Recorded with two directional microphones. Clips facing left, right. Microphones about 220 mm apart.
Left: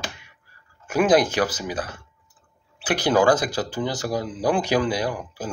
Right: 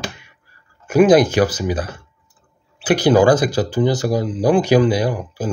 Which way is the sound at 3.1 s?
25° right (ahead or behind).